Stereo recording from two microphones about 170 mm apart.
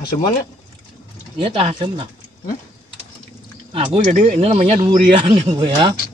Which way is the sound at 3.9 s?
45° right (ahead or behind).